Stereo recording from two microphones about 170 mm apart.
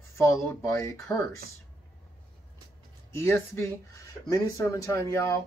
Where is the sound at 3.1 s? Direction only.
15° left (ahead or behind).